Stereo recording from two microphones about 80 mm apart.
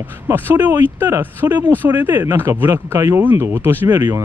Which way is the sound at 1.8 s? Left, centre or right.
Right.